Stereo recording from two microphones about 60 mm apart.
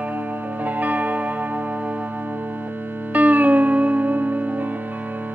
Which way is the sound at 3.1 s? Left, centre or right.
Right.